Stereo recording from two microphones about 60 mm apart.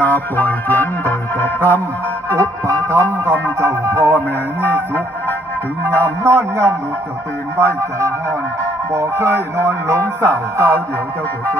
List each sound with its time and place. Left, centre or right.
0.0 s music: left
2.6 s music: right
4.1 s music: left
6.2 s music: right